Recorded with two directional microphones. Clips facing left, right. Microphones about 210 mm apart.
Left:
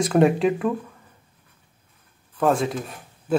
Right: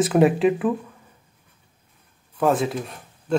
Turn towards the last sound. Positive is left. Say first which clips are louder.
# even
turn(degrees=0)  # may be behind; listen again after turning